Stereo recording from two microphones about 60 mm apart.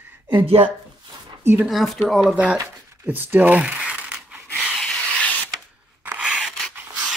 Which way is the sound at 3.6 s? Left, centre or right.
Centre.